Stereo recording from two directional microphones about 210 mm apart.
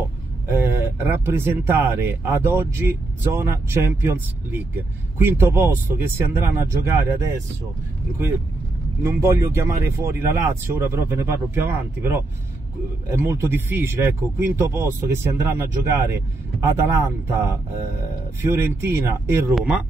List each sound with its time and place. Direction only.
0.5 s speech: 10° right (ahead or behind)
9.0 s speech: 15° right (ahead or behind)